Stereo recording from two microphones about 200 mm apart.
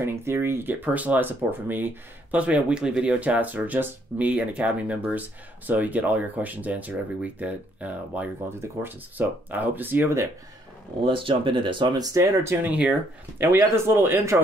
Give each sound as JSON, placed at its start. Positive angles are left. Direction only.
{"t": 0.0, "sound": "speech", "side_deg": -10}
{"t": 11.1, "sound": "speech", "side_deg": -25}